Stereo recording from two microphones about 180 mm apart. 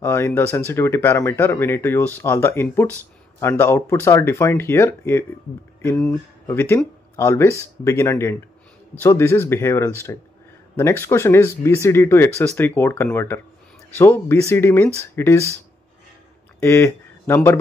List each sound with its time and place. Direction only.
0.0 s speech: 10° left (ahead or behind)
6.4 s speech: 15° left (ahead or behind)
16.5 s speech: 15° left (ahead or behind)